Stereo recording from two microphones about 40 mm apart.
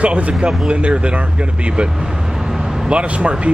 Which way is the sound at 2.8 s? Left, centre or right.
Right.